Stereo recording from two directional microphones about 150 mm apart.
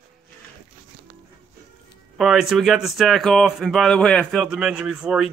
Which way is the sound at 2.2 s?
Centre (ahead or behind).